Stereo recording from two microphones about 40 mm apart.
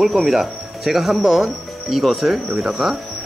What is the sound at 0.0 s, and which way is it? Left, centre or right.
Speech, centre.